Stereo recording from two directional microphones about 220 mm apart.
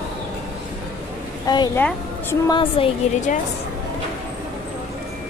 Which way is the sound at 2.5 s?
25° left (ahead or behind).